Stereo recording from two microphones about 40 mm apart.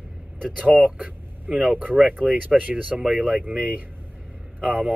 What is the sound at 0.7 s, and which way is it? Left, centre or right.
Speech, right.